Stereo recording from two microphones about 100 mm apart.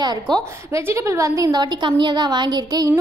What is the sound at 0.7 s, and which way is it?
A woman's voice, 30° right (ahead or behind).